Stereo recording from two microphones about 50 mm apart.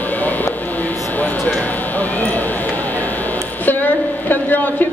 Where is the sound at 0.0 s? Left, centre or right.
Left.